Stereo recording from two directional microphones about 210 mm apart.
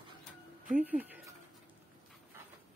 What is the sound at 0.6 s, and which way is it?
Music, 5° right (ahead or behind).